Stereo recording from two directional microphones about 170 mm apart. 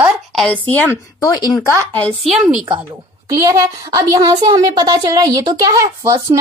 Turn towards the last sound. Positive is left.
turn(degrees=-20)  # may be behind; listen again after turning